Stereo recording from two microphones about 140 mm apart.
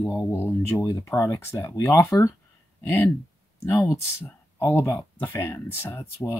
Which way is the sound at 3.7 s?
25° left (ahead or behind).